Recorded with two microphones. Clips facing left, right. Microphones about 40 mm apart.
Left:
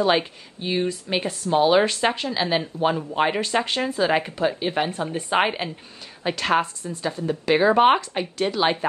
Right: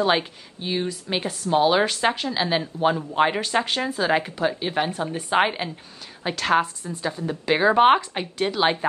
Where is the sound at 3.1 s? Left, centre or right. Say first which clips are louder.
Right 1 dB; centre.